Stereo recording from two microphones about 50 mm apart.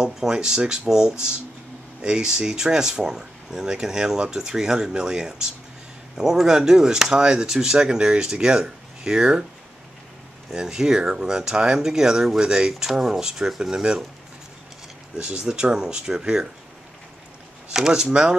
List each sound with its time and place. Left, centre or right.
0.0 s speech: centre
10.5 s speech: centre
15.1 s speech: centre
17.7 s speech: centre